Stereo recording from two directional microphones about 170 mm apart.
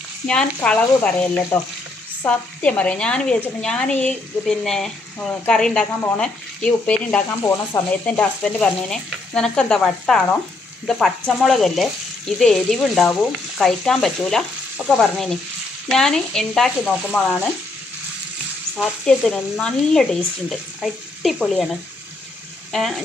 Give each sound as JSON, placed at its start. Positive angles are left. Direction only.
{"t": 0.3, "sound": "frying", "side_deg": 5}
{"t": 2.2, "sound": "speech", "side_deg": 5}
{"t": 7.4, "sound": "frying", "side_deg": 15}
{"t": 8.1, "sound": "speech", "side_deg": 5}
{"t": 18.8, "sound": "speech", "side_deg": 5}
{"t": 22.7, "sound": "speech", "side_deg": 0}